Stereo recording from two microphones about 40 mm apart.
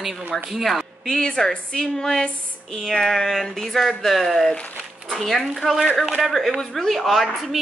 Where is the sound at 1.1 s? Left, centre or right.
Centre.